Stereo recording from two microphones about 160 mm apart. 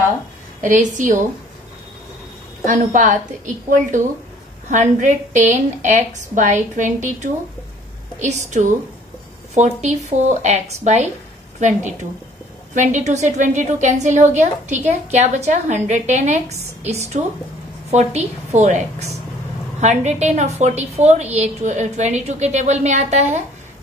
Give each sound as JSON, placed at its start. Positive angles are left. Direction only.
{"t": 0.6, "sound": "a woman's voice", "side_deg": -50}
{"t": 2.6, "sound": "a woman's voice", "side_deg": -50}